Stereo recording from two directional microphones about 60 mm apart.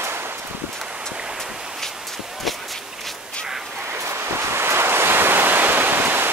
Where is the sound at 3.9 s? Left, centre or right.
Right.